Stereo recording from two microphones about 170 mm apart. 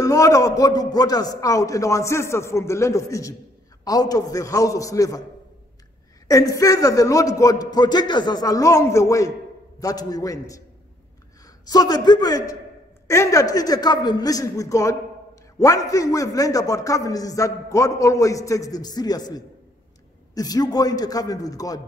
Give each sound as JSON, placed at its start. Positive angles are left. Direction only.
{"t": 0.0, "sound": "a man's voice", "side_deg": 20}
{"t": 6.2, "sound": "a man's voice", "side_deg": 20}
{"t": 11.6, "sound": "a man's voice", "side_deg": 20}